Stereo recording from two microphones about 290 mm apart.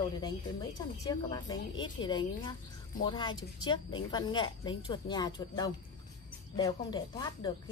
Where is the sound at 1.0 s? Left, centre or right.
Centre.